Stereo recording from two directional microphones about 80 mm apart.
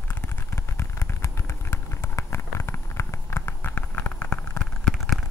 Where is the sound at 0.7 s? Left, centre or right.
Left.